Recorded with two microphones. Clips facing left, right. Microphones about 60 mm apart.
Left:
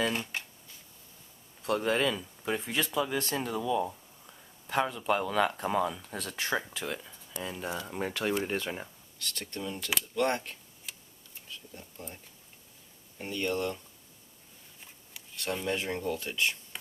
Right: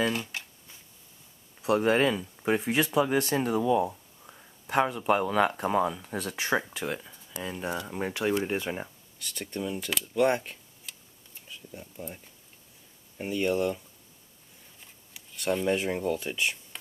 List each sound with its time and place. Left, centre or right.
0.1 s speech: centre
1.8 s speech: right
10.9 s tick: centre
11.4 s speech: centre
13.2 s speech: centre
15.2 s a sound: centre
15.6 s speech: centre